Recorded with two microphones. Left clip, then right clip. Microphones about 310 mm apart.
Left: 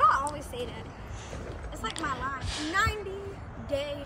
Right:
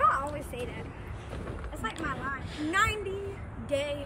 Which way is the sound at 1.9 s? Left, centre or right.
Centre.